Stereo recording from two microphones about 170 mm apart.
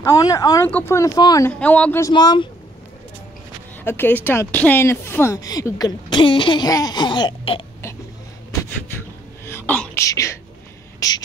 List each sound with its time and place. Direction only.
0.0 s speech: 20° left (ahead or behind)
1.6 s speech: 10° left (ahead or behind); by 2.4 s 25° left (ahead or behind)
3.8 s speech: 10° left (ahead or behind); by 7.6 s 30° left (ahead or behind)
9.5 s speech: 10° left (ahead or behind)
11.0 s a sound: 25° left (ahead or behind)